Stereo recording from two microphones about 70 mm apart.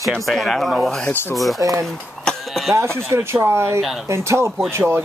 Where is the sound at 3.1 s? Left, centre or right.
Right.